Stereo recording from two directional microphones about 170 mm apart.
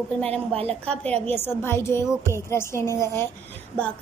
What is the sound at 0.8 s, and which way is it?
A woman's voice, 10° left (ahead or behind).